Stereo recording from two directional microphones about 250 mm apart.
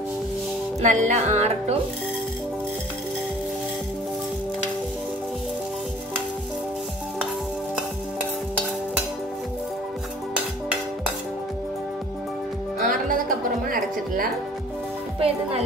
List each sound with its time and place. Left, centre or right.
0.7 s music: right
13.1 s music: right
15.1 s music: right